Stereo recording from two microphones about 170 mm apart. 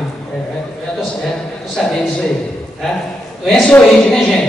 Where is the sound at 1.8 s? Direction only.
5° left (ahead or behind).